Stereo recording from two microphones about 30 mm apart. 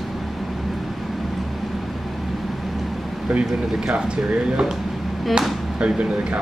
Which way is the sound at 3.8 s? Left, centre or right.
Right.